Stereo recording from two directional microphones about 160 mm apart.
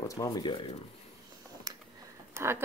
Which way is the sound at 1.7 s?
25° right (ahead or behind).